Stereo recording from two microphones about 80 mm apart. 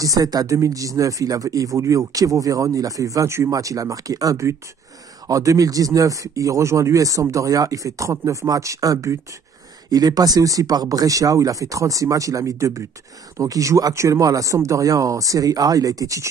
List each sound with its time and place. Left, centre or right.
0.0 s speech: right
9.8 s speech: right